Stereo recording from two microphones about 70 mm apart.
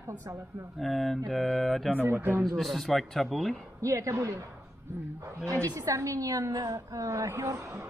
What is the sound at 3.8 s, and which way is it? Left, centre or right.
Speech, right.